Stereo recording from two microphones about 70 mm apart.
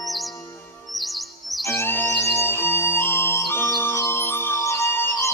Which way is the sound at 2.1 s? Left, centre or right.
Centre.